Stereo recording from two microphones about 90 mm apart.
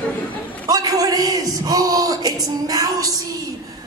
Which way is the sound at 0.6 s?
45° right (ahead or behind).